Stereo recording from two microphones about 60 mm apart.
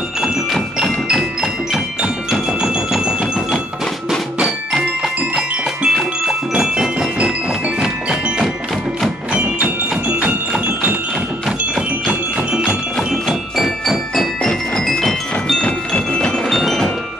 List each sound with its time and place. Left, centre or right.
0.2 s music: centre
1.0 s tubular bells: centre
5.0 s music: centre
6.2 s tubular bells: centre
9.3 s music: right
11.7 s music: centre
12.9 s music: centre
14.4 s music: centre
15.6 s tubular bells: centre
16.4 s music: centre